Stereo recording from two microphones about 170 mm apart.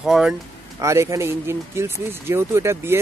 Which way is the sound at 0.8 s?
15° right (ahead or behind).